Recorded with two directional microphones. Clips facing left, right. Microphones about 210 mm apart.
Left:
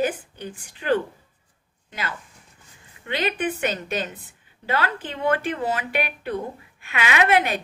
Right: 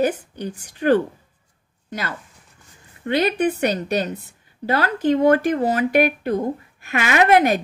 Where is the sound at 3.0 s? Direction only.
40° right (ahead or behind).